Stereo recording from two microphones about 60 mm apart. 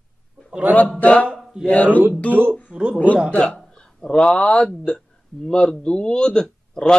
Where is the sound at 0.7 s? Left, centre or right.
Right.